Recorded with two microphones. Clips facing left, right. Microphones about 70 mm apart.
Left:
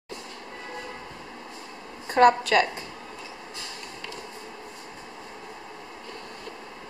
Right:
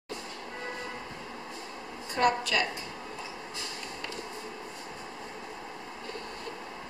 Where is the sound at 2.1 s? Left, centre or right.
Left.